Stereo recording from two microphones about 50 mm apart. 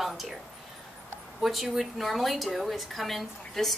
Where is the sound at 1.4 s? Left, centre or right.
Centre.